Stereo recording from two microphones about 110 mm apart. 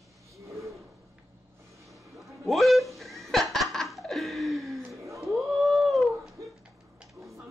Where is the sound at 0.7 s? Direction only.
Centre (ahead or behind).